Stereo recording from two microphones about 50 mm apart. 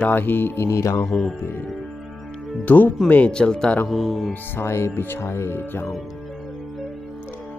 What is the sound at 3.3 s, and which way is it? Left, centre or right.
Speech, centre.